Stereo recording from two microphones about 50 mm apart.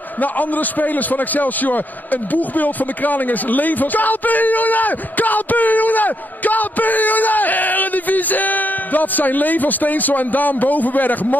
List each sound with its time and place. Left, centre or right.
0.2 s a man's voice: left